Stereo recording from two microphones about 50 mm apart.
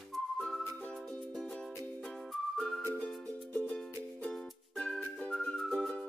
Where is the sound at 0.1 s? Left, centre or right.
Centre.